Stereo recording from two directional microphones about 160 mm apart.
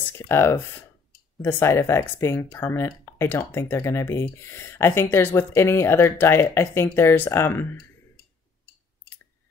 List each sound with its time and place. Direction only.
0.3 s speech: 15° left (ahead or behind)